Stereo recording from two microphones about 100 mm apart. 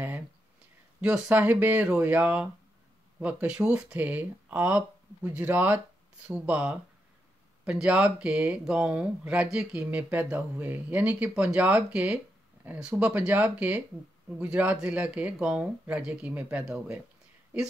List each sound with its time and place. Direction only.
1.0 s speech: 15° right (ahead or behind)